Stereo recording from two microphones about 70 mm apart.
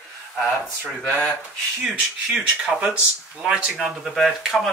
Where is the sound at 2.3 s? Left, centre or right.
Centre.